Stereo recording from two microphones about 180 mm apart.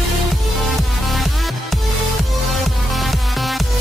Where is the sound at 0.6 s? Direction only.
Centre (ahead or behind).